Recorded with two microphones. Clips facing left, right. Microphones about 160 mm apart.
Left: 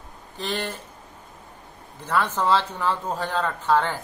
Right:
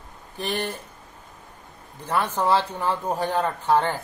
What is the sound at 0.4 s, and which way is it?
Speech, 15° right (ahead or behind).